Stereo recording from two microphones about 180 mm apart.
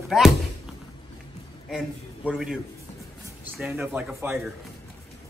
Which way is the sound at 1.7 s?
5° right (ahead or behind).